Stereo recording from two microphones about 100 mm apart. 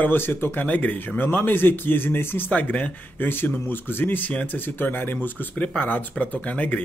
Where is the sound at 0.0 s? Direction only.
20° left (ahead or behind).